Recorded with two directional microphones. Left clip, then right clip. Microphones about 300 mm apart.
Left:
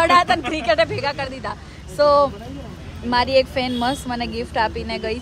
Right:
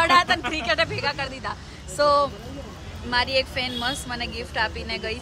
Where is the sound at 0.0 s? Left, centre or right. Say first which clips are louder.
Left 3 dB; centre.